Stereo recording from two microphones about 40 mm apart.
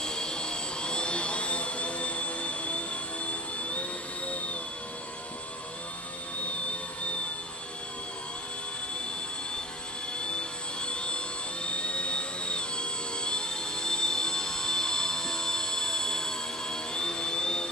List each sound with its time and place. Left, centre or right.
0.0 s jet engine: centre
10.1 s jet engine: left